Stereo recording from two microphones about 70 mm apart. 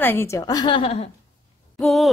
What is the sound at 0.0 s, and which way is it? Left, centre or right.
Speech, left.